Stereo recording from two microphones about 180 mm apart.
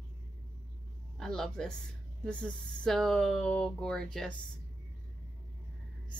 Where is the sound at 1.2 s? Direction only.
5° left (ahead or behind).